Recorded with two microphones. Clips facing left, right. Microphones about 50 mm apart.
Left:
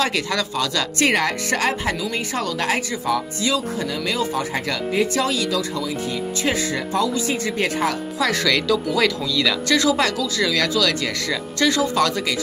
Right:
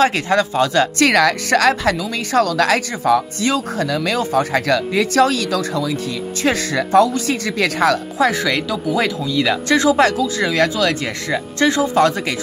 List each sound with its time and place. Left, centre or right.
0.0 s speech: right
0.9 s a woman's voice: right
8.3 s speech: right